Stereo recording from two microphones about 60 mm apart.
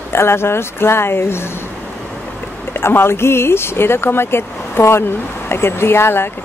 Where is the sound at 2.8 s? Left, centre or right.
Left.